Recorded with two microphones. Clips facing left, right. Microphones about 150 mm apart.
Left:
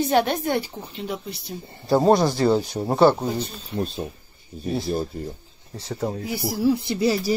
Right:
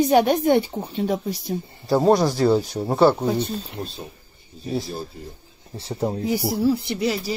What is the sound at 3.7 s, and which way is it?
Speech, 50° left (ahead or behind).